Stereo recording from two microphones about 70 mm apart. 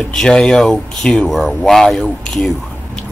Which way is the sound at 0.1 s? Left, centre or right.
Centre.